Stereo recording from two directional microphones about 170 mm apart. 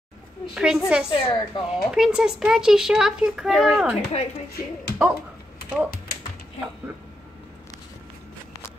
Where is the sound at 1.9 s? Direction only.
5° right (ahead or behind).